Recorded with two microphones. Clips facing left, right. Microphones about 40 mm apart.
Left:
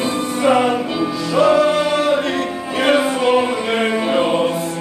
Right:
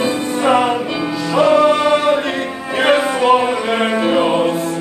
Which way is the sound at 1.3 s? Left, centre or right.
Centre.